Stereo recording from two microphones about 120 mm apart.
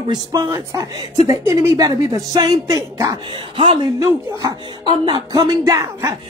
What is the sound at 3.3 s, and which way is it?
Speech, 45° right (ahead or behind).